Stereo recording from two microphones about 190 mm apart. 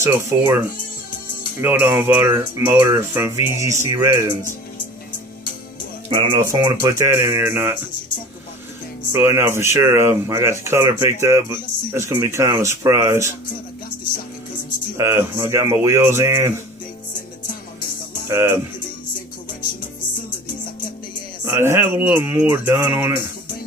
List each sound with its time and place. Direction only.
0.3 s speech: 15° right (ahead or behind)
6.0 s speech: 25° right (ahead or behind)
9.1 s speech: 10° right (ahead or behind)
15.0 s speech: 15° right (ahead or behind)
18.3 s speech: 15° right (ahead or behind)
21.5 s speech: 15° right (ahead or behind)